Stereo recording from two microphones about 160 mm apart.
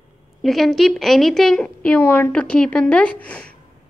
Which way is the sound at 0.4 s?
Centre (ahead or behind).